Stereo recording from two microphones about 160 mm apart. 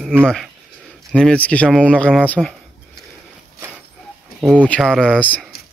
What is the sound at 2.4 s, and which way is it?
Speech, 5° right (ahead or behind).